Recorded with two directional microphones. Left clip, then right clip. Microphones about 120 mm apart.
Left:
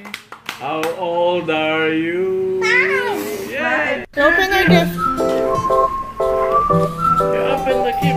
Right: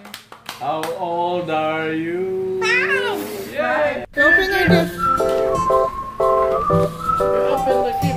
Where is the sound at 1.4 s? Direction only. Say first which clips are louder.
Left 3 dB; 20° right (ahead or behind).